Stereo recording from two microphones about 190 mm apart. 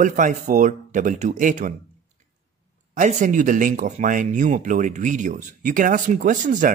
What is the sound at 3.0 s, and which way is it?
Speech, 40° right (ahead or behind).